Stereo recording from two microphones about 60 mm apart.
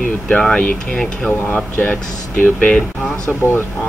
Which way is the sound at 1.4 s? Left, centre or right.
Left.